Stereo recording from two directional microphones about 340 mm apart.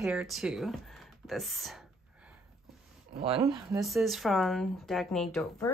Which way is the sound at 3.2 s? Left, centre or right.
Centre.